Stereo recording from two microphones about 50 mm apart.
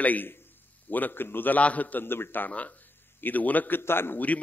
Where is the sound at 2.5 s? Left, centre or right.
Left.